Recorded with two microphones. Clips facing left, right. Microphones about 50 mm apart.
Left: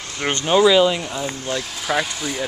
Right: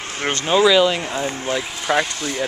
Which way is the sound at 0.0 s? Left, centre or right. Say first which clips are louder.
Right 1 dB; right.